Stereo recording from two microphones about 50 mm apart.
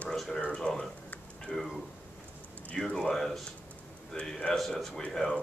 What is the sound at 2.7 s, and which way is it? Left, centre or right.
A man's voice, centre.